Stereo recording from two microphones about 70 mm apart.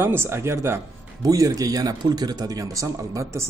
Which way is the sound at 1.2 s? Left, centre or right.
Right.